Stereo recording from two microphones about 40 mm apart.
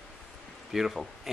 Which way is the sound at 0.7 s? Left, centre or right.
Centre.